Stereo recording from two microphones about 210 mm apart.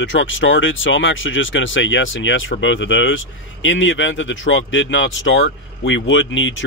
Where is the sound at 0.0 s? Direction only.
65° left (ahead or behind).